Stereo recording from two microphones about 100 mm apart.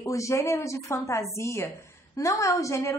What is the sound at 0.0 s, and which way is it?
A woman's voice, 30° left (ahead or behind).